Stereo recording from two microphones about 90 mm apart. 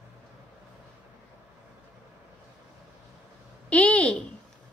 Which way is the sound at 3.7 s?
15° left (ahead or behind).